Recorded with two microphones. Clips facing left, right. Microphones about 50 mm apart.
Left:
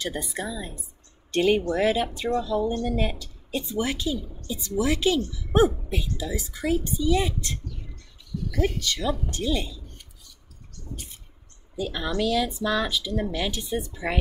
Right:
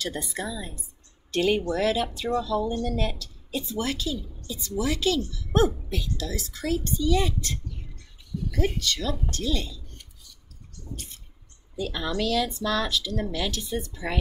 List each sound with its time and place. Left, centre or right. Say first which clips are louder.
0.0 s speech: left 1 dB; centre
1.7 s speech: left 2 dB; centre
9.8 s a sound: left 1 dB; centre
11.7 s speech: left 1 dB; centre